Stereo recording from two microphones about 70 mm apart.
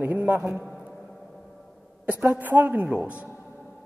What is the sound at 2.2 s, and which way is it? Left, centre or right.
Speech, right.